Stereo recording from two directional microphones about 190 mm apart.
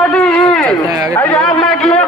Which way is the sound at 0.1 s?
5° left (ahead or behind).